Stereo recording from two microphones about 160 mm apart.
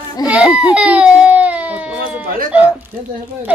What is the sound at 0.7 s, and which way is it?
Baby cry, 5° right (ahead or behind).